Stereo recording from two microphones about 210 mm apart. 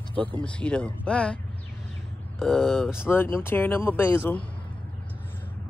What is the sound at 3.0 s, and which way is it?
Speech, 10° left (ahead or behind).